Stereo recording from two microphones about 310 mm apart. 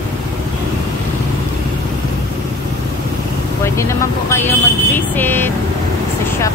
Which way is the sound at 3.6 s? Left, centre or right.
Centre.